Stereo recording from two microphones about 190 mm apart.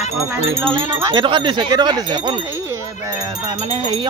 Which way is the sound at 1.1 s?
25° right (ahead or behind).